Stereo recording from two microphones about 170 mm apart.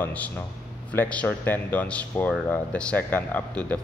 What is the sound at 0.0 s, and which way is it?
Speech, 10° left (ahead or behind).